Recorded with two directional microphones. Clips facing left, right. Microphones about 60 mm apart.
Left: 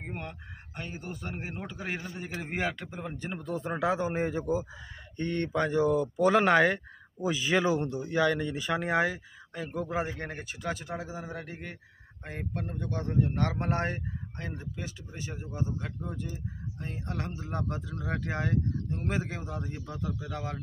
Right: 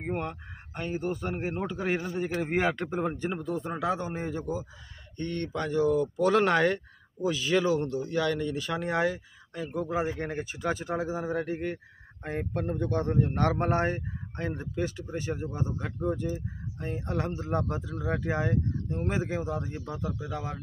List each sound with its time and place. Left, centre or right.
0.0 s speech: centre
0.9 s speech: right
1.3 s a man's voice: centre
1.9 s speech: centre
2.2 s a man's voice: centre
2.7 s speech: right
3.0 s speech: right
3.3 s speech: centre
3.7 s a man's voice: centre
10.1 s speech: centre